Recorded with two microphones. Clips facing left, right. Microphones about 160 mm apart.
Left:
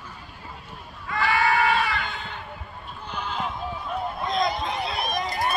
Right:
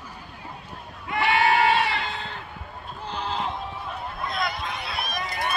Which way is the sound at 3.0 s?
30° right (ahead or behind).